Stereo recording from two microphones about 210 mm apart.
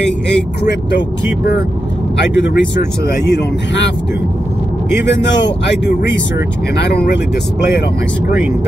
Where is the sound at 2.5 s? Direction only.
55° left (ahead or behind).